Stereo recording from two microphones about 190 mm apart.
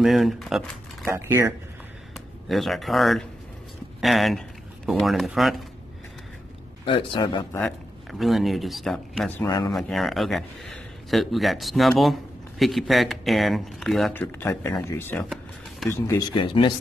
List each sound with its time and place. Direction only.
0.0 s speech: centre (ahead or behind)
1.1 s speech: 15° right (ahead or behind)
2.1 s speech: centre (ahead or behind)
6.8 s speech: 25° left (ahead or behind)
7.5 s a man's voice: centre (ahead or behind)
9.4 s speech: 20° left (ahead or behind)
9.7 s a man's voice: centre (ahead or behind)
14.4 s speech: 15° left (ahead or behind)